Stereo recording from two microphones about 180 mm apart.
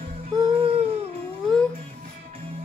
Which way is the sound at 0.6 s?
35° right (ahead or behind).